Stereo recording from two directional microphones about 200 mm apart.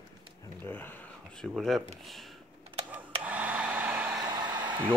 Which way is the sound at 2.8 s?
10° right (ahead or behind).